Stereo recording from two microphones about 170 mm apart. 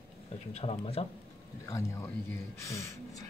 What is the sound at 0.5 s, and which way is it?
Speech, 40° left (ahead or behind).